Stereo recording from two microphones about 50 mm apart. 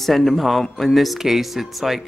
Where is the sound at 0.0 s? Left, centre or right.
Centre.